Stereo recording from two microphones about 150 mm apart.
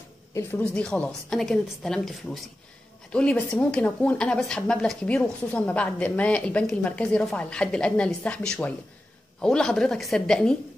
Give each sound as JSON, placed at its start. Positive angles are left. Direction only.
{"t": 0.3, "sound": "a woman's voice", "side_deg": 15}